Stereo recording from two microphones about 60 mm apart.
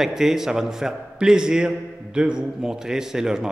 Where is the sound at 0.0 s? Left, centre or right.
Centre.